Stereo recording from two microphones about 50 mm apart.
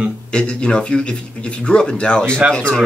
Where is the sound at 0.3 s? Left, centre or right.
Centre.